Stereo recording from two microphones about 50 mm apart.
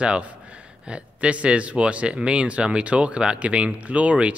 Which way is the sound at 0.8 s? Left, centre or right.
Right.